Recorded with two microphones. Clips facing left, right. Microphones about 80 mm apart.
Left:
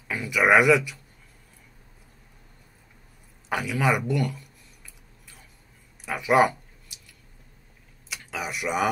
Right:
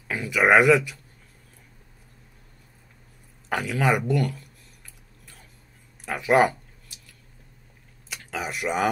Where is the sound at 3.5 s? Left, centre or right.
Centre.